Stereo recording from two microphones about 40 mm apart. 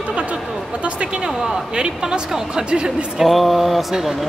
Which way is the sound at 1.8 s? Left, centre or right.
Right.